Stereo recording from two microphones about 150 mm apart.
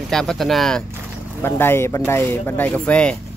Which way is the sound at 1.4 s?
15° left (ahead or behind).